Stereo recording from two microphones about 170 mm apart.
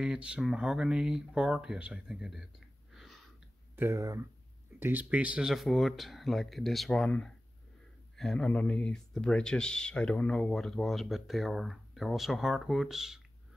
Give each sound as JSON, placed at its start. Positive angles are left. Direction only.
{"t": 0.0, "sound": "speech", "side_deg": -5}
{"t": 2.9, "sound": "a sound", "side_deg": 0}
{"t": 3.7, "sound": "speech", "side_deg": -15}